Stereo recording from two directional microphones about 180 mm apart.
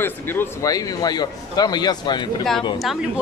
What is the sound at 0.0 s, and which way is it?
Speech, 10° left (ahead or behind).